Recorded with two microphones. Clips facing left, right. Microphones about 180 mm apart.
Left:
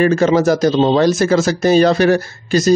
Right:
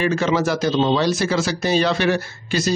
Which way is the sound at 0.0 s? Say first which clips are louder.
Left 7 dB; 45° left (ahead or behind).